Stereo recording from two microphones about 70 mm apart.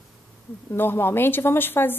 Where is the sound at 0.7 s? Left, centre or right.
Left.